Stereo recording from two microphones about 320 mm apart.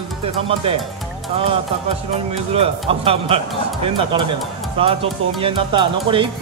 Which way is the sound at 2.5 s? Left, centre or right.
Centre.